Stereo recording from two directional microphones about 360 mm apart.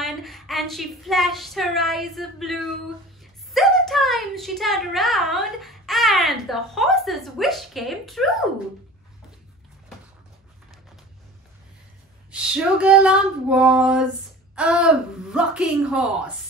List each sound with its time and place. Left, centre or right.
0.0 s a sound: centre
3.5 s a child's voice: centre
12.3 s a child's voice: centre